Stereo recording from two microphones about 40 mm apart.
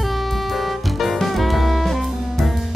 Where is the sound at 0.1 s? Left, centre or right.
Centre.